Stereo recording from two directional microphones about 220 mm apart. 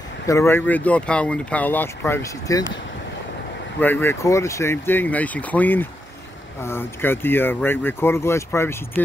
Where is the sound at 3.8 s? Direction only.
10° left (ahead or behind).